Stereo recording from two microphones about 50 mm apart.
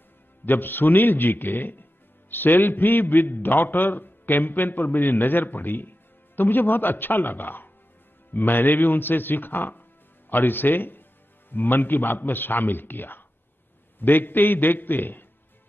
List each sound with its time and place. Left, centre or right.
0.5 s a man's voice: left